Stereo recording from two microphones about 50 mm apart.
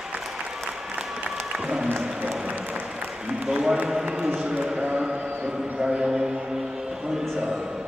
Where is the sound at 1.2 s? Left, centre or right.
Centre.